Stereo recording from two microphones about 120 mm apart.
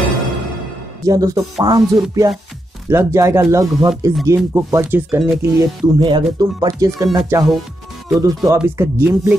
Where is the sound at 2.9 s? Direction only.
20° right (ahead or behind).